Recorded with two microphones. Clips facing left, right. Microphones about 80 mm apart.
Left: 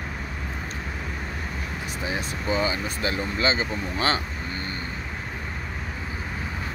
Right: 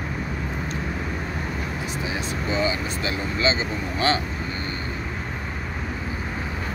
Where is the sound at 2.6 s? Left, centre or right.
Left.